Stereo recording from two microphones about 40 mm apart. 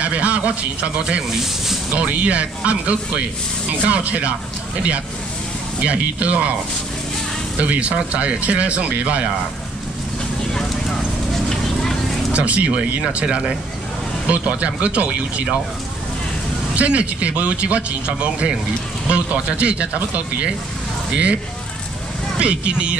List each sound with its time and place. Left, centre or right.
0.0 s a man's voice: right
5.8 s speech: right
7.5 s speech: right
11.4 s vehicle: centre
12.3 s speech: right
16.7 s speech: right
22.4 s speech: right